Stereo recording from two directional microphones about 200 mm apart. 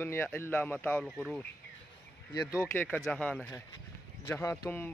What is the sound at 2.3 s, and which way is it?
Speech, 20° left (ahead or behind).